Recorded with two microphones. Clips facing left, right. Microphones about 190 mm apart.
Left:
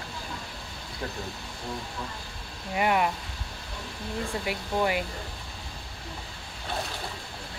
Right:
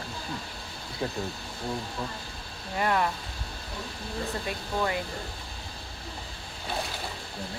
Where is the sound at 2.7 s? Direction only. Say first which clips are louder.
Left 2 dB; 10° left (ahead or behind).